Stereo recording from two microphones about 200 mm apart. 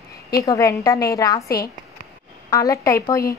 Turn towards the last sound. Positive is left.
turn(degrees=15)  # may be behind; listen again after turning